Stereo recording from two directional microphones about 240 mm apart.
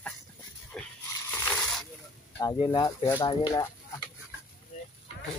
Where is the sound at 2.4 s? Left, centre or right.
Centre.